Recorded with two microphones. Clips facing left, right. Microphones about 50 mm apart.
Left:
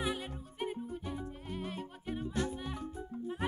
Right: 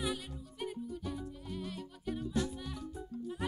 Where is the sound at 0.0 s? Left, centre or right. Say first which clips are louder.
Left 1 dB; left.